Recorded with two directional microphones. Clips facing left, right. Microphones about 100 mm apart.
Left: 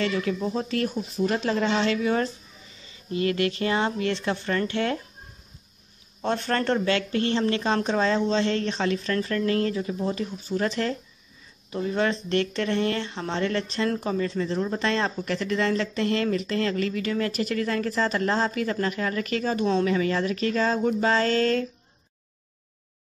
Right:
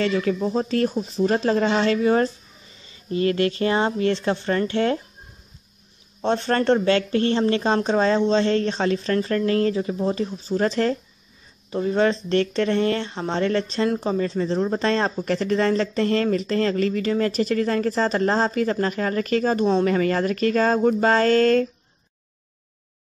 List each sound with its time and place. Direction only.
0.0 s speech: 40° right (ahead or behind)
6.2 s speech: 30° right (ahead or behind); by 21.6 s 50° right (ahead or behind)